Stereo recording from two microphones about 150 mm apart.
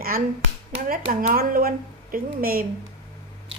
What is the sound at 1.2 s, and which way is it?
A woman's voice, 75° right (ahead or behind).